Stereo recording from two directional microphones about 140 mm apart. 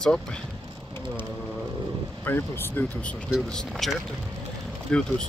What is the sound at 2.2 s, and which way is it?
Speech, 15° left (ahead or behind).